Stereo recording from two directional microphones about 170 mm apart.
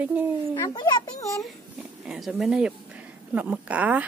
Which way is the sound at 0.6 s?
25° left (ahead or behind).